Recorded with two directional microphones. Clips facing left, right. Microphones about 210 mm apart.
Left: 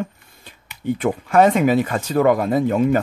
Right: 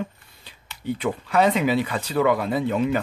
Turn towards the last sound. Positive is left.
turn(degrees=45)  # may be behind; listen again after turning